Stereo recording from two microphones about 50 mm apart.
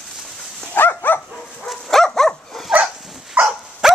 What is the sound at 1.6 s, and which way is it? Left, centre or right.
Dog, centre.